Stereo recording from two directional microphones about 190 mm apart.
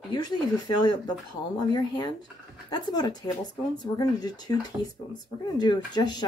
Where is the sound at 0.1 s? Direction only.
20° left (ahead or behind).